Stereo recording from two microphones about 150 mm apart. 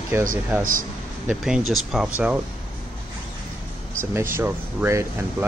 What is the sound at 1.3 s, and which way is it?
Speech, 5° right (ahead or behind).